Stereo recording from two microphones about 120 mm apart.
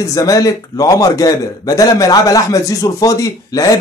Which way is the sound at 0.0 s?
30° left (ahead or behind).